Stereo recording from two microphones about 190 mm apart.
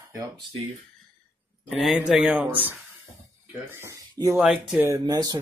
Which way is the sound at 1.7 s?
Centre (ahead or behind).